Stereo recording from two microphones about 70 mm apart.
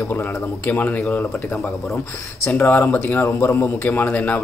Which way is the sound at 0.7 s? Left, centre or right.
Left.